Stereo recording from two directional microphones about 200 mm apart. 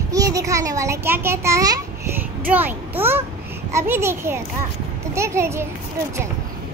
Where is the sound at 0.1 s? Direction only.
15° right (ahead or behind).